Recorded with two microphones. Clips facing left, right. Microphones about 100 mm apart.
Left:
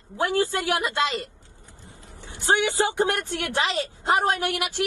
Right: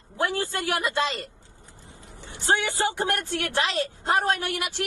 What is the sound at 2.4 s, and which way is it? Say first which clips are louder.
A woman's voice: left 2 dB; 15° left (ahead or behind).